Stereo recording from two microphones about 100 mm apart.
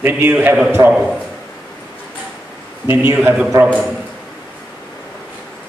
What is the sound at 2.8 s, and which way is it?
Speech, 25° right (ahead or behind).